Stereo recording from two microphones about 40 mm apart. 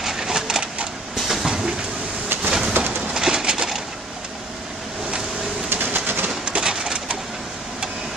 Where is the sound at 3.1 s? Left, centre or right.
Centre.